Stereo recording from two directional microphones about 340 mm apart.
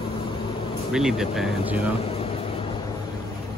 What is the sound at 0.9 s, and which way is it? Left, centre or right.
Speech, centre.